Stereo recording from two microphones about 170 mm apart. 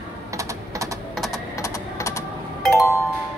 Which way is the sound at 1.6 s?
15° left (ahead or behind).